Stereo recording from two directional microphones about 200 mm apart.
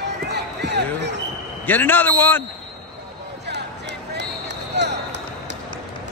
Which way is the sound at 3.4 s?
60° right (ahead or behind).